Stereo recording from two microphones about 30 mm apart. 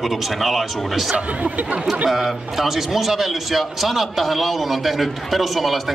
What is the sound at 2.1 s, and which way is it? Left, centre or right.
A man's voice, centre.